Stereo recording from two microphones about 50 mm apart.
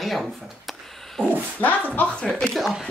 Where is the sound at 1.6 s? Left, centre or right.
Left.